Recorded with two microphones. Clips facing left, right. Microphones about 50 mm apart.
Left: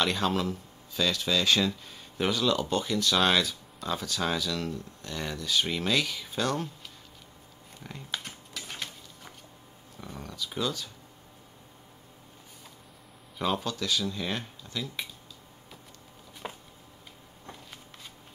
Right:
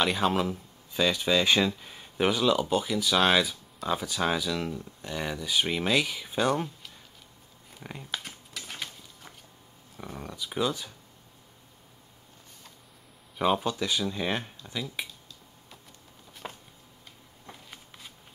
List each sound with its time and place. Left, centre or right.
0.0 s speech: centre
7.8 s speech: centre
8.1 s a sound: centre
9.9 s speech: centre
13.4 s speech: centre
16.4 s a sound: centre
17.5 s shuffling cards: centre